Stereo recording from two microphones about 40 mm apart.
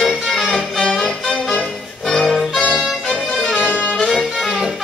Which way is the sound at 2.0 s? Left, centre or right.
Centre.